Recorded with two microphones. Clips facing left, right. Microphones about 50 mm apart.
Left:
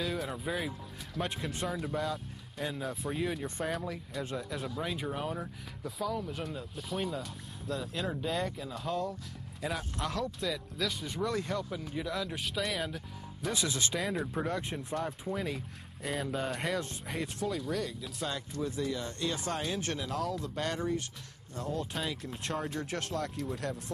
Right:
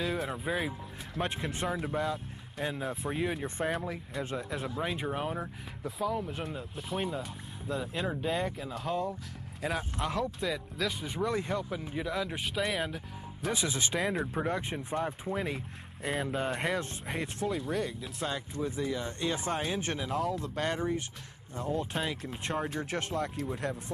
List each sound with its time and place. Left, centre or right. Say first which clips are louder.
0.0 s speech: right 2 dB; centre
6.0 s speech: right 3 dB; right
6.3 s speech: right 1 dB; centre
8.2 s speech: right 2 dB; right
9.8 s speech: right 4 dB; right
10.4 s speech: right 2 dB; centre
10.9 s speech: right 2 dB; right
13.9 s speech: right 2 dB; centre
18.3 s speech: right 1 dB; right
20.3 s speech: right 1 dB; centre
20.6 s speech: right 2 dB; right
21.9 s speech: right 2 dB; centre